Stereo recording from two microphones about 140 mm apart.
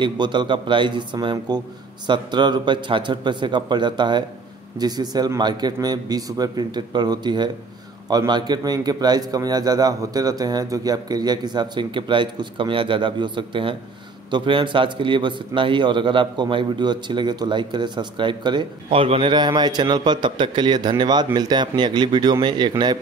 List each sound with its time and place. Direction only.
0.0 s a man's voice: 35° right (ahead or behind)